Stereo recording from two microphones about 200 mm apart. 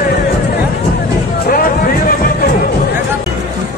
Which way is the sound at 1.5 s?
45° left (ahead or behind).